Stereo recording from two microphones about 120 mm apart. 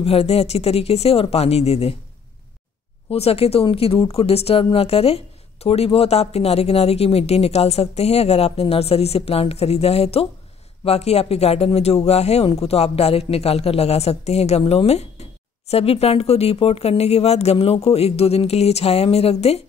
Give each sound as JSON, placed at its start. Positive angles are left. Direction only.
{"t": 0.0, "sound": "speech", "side_deg": 55}
{"t": 3.1, "sound": "speech", "side_deg": 55}